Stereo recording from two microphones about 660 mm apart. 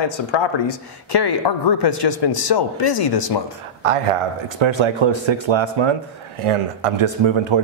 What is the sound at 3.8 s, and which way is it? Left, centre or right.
Speech, right.